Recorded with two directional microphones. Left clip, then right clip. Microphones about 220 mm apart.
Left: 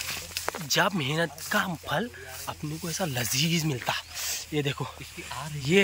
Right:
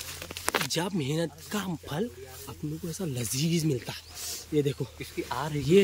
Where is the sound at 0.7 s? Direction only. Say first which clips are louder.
Left 5 dB; 5° right (ahead or behind).